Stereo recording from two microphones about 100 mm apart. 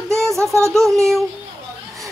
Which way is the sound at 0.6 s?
5° left (ahead or behind).